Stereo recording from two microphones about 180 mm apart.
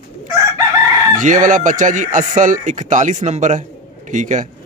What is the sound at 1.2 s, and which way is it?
Speech, 45° right (ahead or behind).